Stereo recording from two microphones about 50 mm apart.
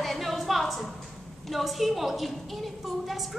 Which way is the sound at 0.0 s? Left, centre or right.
Centre.